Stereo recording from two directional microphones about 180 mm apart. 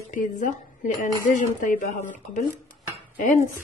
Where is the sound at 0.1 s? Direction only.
45° left (ahead or behind).